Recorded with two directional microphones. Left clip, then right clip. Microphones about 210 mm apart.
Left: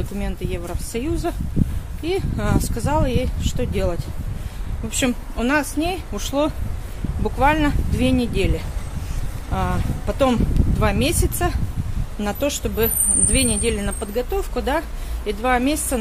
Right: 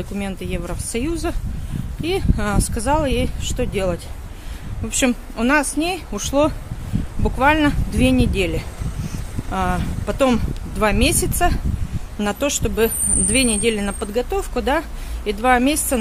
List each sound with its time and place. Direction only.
0.2 s speech: 25° right (ahead or behind)